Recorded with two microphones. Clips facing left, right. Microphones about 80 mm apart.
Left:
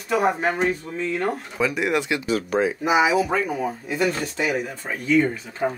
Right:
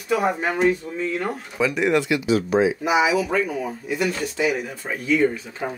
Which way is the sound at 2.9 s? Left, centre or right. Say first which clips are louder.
Left 4 dB; left.